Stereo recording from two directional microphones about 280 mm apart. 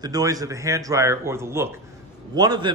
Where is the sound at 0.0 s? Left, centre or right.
Centre.